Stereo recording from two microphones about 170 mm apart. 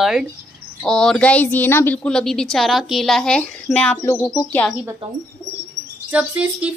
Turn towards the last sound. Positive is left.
turn(degrees=-10)  # may be behind; listen again after turning